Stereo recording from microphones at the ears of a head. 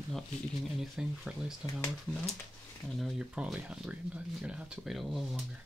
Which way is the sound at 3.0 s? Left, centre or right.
Centre.